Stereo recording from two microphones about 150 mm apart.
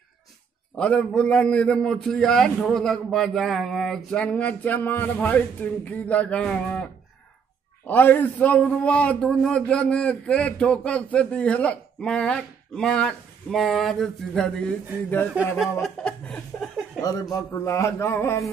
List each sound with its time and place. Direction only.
0.7 s a man's voice: 5° left (ahead or behind)
17.0 s a man's voice: 25° left (ahead or behind)